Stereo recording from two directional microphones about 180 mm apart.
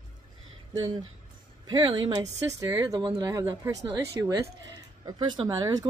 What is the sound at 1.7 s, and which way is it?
A woman's voice, 25° right (ahead or behind).